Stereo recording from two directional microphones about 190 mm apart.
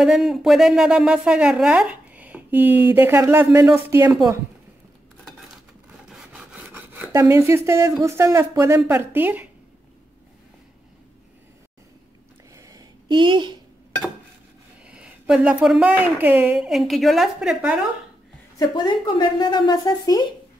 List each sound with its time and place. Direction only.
0.0 s a woman's voice: 5° right (ahead or behind)
5.9 s a sound: 5° right (ahead or behind)
8.0 s a woman's voice: 15° right (ahead or behind)
12.5 s a sound: 20° right (ahead or behind)
14.9 s a woman's voice: 5° right (ahead or behind)
18.6 s a woman's voice: 20° left (ahead or behind)